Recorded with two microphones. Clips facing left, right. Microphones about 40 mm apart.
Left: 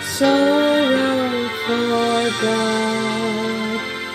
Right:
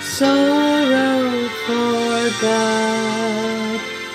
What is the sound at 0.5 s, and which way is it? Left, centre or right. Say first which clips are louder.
Music: right 1 dB; left.